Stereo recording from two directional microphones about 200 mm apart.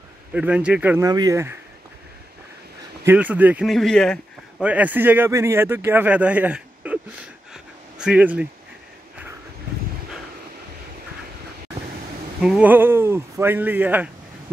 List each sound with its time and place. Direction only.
0.3 s a man's voice: 5° right (ahead or behind)
3.1 s a man's voice: 10° right (ahead or behind)
7.5 s a sound: 5° right (ahead or behind)
12.4 s a man's voice: 5° right (ahead or behind)